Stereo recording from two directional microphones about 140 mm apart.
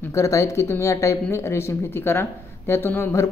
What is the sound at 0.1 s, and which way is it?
Speech, 20° left (ahead or behind).